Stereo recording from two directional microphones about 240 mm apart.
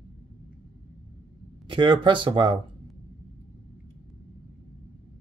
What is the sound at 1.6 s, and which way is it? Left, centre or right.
Speech, centre.